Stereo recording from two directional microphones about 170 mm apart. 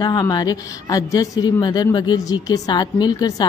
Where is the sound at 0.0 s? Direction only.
25° left (ahead or behind).